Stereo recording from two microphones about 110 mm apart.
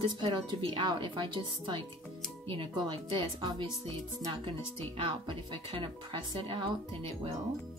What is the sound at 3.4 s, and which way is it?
Speech, 45° right (ahead or behind).